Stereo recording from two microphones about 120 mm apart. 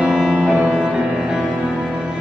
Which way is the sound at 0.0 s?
5° right (ahead or behind).